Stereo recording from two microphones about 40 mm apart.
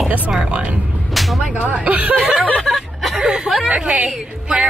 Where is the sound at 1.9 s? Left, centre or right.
Right.